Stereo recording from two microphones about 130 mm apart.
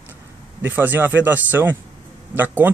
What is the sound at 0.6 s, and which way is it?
Speech, 15° right (ahead or behind).